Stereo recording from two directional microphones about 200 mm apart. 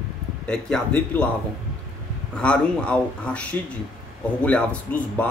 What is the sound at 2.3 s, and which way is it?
Speech, 5° left (ahead or behind).